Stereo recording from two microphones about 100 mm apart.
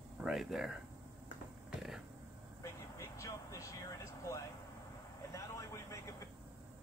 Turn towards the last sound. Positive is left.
turn(degrees=30)  # may be behind; listen again after turning